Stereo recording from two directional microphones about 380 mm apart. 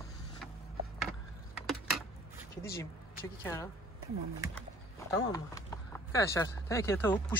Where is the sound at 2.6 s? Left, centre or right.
Centre.